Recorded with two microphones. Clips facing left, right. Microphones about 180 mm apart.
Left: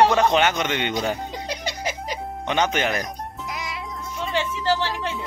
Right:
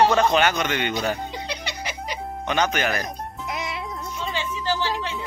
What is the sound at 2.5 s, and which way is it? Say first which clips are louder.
Speech: left 1 dB; 25° left (ahead or behind).